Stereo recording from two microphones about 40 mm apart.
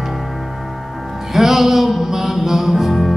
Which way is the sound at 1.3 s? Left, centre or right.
Centre.